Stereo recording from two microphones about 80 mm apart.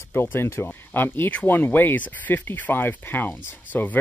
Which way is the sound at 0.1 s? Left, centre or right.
Left.